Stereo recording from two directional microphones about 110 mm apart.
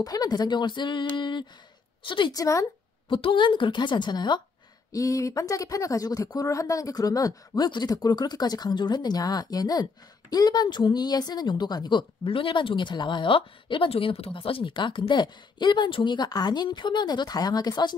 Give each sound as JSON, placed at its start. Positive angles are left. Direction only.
{"t": 0.0, "sound": "a woman's voice", "side_deg": 35}
{"t": 2.3, "sound": "speech", "side_deg": 30}
{"t": 3.1, "sound": "a woman's voice", "side_deg": 50}
{"t": 4.9, "sound": "a woman's voice", "side_deg": 30}